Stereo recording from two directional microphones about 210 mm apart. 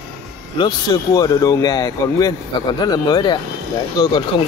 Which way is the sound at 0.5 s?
20° left (ahead or behind).